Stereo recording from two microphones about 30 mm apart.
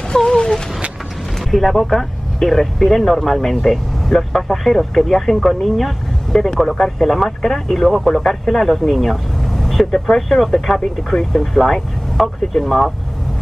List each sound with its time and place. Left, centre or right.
0.1 s speech: left
1.5 s speech: centre
9.4 s vehicle: centre
9.8 s speech: left
10.1 s speech: centre